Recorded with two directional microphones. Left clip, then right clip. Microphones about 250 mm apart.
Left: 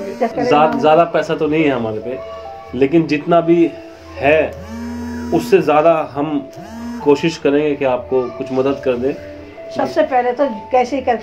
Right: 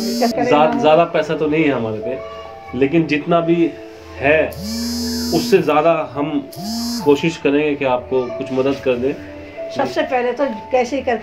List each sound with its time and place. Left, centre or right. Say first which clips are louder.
0.0 s speech: even; centre
5.5 s speech: left 2 dB; centre
9.8 s a woman's voice: left 3 dB; left